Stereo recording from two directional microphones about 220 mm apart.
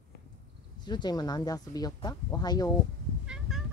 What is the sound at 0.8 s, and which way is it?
Speech, 20° left (ahead or behind).